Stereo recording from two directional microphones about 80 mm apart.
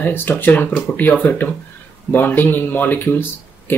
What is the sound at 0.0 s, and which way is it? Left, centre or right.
Speech, left.